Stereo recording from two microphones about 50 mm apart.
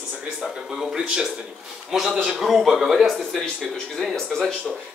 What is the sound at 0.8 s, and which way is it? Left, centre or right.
Speech, centre.